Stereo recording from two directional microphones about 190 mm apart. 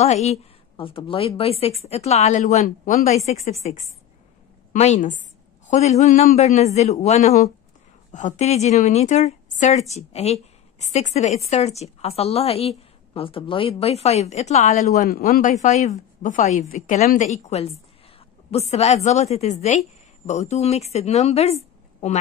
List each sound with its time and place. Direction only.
0.0 s speech: 35° left (ahead or behind)